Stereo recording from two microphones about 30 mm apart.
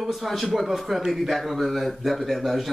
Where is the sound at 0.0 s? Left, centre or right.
Centre.